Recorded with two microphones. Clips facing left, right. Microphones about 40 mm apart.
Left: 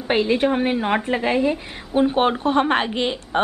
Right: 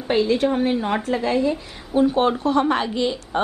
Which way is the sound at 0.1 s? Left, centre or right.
Left.